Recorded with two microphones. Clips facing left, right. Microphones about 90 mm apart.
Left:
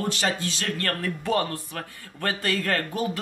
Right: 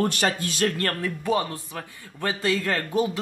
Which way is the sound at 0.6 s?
30° right (ahead or behind).